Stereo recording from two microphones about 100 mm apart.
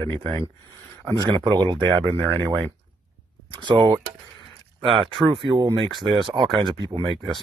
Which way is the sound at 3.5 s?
55° right (ahead or behind).